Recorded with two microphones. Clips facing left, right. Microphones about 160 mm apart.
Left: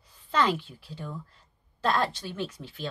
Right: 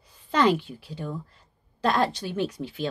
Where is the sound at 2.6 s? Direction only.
10° right (ahead or behind).